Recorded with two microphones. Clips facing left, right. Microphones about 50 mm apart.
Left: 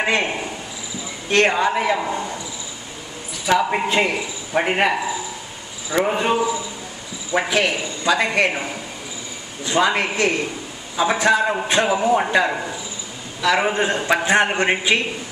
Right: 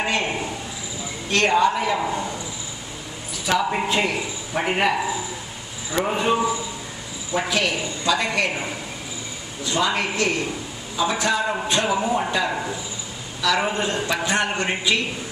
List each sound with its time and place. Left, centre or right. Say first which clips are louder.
0.0 s speech: left 3 dB; left
1.3 s a man's voice: left 1 dB; left
2.0 s a man's voice: left 1 dB; centre
3.4 s a man's voice: left 3 dB; centre
5.9 s a man's voice: left 3 dB; centre
7.4 s a man's voice: left 3 dB; centre
9.8 s a man's voice: left 3 dB; centre